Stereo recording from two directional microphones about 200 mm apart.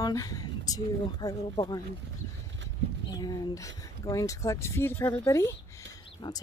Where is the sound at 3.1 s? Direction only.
20° left (ahead or behind).